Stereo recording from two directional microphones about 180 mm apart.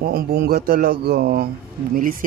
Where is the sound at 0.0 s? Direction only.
55° right (ahead or behind).